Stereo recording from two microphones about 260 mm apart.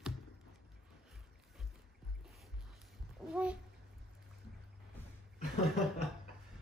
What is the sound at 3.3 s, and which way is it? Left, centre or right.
Speech, centre.